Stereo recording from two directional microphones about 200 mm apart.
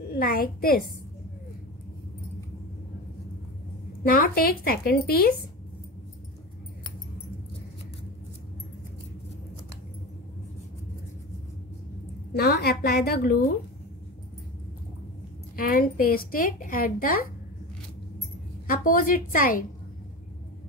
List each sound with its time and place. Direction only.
0.1 s a woman's voice: 45° left (ahead or behind)
4.0 s a woman's voice: 45° left (ahead or behind)
12.4 s a woman's voice: 55° left (ahead or behind)
15.5 s a woman's voice: 45° left (ahead or behind)
18.7 s a woman's voice: 45° left (ahead or behind)